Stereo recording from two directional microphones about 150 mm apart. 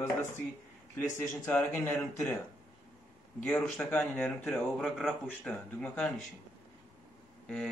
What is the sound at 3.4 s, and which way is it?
Speech, 10° left (ahead or behind).